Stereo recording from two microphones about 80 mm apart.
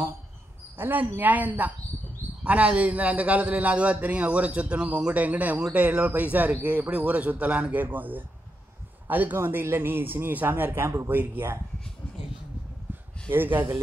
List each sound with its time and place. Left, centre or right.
0.7 s a man's voice: right
13.3 s speech: right